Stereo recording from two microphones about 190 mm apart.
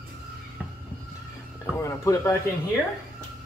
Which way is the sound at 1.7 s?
15° left (ahead or behind).